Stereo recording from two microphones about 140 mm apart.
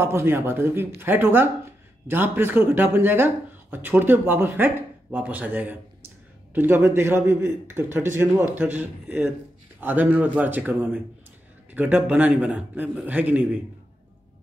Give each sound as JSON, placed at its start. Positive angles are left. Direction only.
{"t": 0.0, "sound": "speech", "side_deg": -15}